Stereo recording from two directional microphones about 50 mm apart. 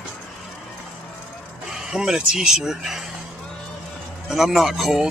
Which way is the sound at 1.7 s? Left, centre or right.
Centre.